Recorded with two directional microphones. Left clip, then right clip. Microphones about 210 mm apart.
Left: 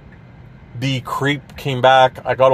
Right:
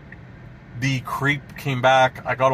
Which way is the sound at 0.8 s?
45° left (ahead or behind).